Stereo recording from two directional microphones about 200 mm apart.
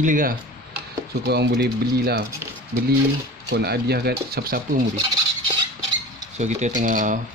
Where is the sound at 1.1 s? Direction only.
55° right (ahead or behind).